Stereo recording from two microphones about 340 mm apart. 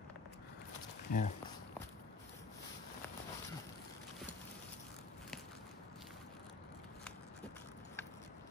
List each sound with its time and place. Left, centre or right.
1.1 s speech: left